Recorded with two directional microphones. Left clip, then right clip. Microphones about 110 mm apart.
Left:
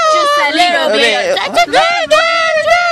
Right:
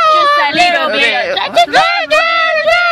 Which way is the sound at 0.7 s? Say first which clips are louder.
Even; 65° left (ahead or behind).